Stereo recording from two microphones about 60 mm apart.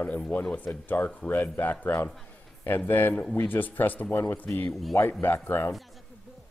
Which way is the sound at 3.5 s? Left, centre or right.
Left.